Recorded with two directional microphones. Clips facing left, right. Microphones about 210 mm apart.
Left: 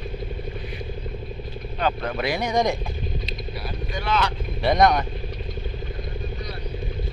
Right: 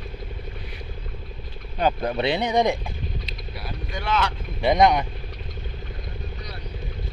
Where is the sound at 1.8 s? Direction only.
20° right (ahead or behind).